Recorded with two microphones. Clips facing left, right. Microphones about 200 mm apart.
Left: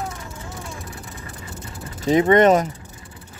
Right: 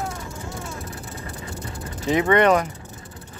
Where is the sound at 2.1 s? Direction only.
35° left (ahead or behind).